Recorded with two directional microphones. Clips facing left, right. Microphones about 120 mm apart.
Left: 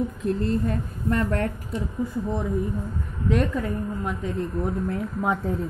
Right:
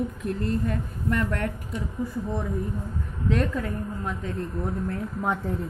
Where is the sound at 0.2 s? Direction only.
30° left (ahead or behind).